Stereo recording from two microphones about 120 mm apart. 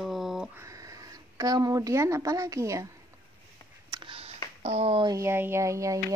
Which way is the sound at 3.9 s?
45° right (ahead or behind).